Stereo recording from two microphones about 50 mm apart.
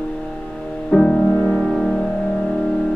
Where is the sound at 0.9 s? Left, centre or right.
Centre.